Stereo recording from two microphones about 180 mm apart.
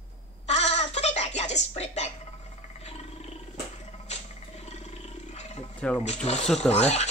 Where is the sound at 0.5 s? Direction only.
40° left (ahead or behind).